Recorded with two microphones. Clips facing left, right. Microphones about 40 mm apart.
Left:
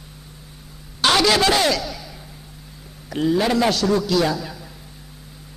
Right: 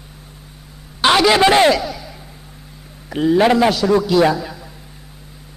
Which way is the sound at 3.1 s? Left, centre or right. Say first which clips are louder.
Right 6 dB; centre.